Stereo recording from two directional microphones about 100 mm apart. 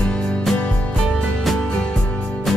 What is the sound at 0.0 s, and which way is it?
Music, 10° left (ahead or behind).